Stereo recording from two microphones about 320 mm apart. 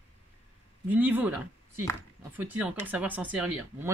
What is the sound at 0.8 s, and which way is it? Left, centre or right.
Speech, centre.